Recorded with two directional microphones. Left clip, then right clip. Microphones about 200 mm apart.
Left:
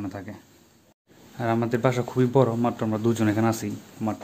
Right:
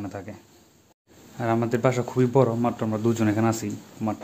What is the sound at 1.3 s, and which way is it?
Speech, centre (ahead or behind).